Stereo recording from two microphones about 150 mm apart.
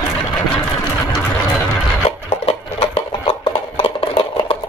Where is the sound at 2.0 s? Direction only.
40° left (ahead or behind).